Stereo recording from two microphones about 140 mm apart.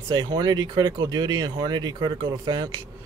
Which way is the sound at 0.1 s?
30° right (ahead or behind).